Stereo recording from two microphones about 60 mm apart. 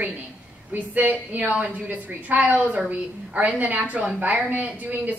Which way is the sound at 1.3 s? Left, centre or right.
Right.